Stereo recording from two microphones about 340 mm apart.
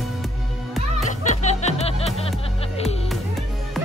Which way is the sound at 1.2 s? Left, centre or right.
Left.